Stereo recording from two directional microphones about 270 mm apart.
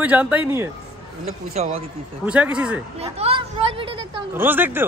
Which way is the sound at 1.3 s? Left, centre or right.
Right.